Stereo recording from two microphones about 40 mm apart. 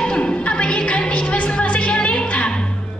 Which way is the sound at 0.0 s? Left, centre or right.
Left.